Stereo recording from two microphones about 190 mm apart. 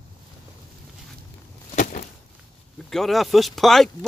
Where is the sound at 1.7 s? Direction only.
45° left (ahead or behind).